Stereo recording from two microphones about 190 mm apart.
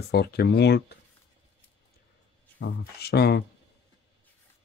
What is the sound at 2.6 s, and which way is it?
Speech, 60° left (ahead or behind).